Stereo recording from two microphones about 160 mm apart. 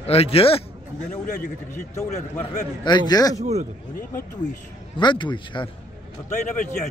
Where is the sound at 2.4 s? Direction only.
30° left (ahead or behind).